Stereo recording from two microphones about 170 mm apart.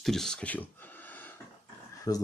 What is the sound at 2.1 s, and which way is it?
Speech, 20° left (ahead or behind).